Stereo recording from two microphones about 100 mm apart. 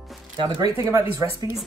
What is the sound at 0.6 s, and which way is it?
Speech, 35° right (ahead or behind).